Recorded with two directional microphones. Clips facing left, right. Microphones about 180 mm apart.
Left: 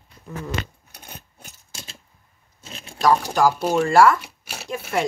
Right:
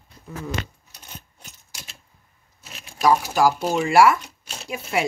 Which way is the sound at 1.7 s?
30° left (ahead or behind).